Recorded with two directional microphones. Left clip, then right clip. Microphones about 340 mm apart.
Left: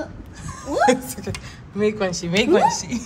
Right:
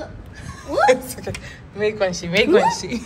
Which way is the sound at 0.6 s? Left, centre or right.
Left.